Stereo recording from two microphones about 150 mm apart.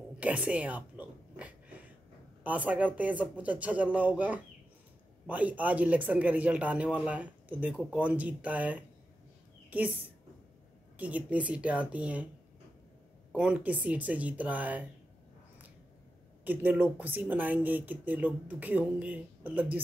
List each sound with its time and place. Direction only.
0.2 s a sound: 10° right (ahead or behind)
2.4 s a woman's voice: 10° right (ahead or behind)
11.0 s a woman's voice: 10° right (ahead or behind)
13.3 s a woman's voice: 10° right (ahead or behind)
16.4 s a woman's voice: 10° right (ahead or behind)